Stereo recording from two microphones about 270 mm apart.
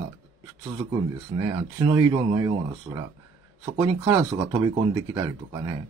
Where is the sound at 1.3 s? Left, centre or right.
Centre.